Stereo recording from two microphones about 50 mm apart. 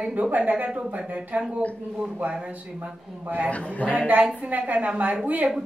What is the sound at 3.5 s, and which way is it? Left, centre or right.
Speech, left.